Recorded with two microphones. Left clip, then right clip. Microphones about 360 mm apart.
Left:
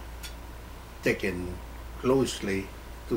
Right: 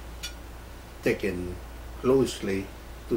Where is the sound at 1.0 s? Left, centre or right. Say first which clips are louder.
Right 1 dB; centre.